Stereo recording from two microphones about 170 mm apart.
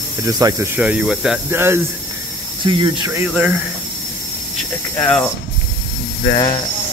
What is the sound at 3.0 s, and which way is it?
Speech, 15° right (ahead or behind).